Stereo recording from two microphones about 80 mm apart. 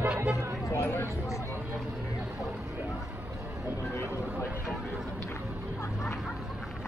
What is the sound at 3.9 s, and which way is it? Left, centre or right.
Speech, left.